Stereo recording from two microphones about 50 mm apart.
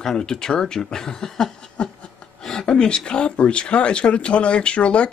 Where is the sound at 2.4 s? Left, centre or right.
Centre.